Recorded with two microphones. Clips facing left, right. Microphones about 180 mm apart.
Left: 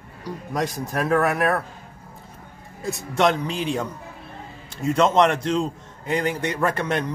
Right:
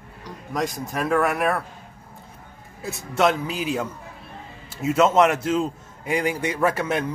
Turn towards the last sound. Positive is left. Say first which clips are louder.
# right 1 dB
turn(degrees=-5)  # may be behind; listen again after turning